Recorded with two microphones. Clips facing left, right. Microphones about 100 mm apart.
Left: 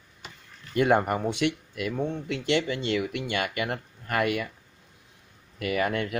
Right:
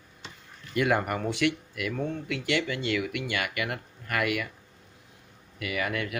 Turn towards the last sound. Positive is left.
turn(degrees=35)  # may be behind; listen again after turning